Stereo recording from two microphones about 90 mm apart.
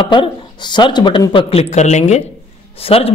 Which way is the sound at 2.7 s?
90° left.